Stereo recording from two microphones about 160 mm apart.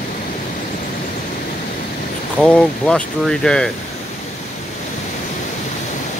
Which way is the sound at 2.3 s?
5° left (ahead or behind).